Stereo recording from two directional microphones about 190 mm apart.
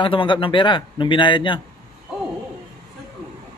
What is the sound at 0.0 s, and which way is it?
A man's voice, 25° left (ahead or behind).